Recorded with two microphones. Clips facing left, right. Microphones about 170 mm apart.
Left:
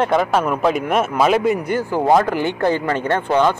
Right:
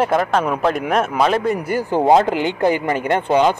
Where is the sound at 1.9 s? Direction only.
20° right (ahead or behind).